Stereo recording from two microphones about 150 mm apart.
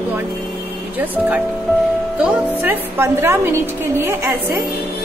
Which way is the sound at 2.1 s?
10° right (ahead or behind).